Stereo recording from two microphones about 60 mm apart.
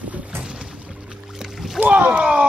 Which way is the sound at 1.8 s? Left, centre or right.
Right.